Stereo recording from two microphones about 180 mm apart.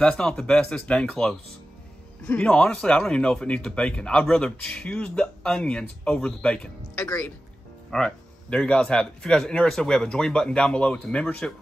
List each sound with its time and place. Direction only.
0.0 s speech: 5° left (ahead or behind)
7.0 s speech: 15° left (ahead or behind)
7.9 s speech: 5° left (ahead or behind)